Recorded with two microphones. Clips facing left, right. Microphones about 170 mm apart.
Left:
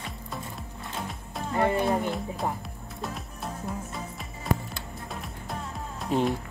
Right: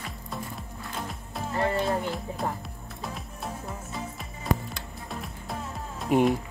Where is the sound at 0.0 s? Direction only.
Centre (ahead or behind).